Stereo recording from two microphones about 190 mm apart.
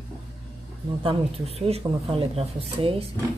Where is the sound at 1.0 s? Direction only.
30° right (ahead or behind).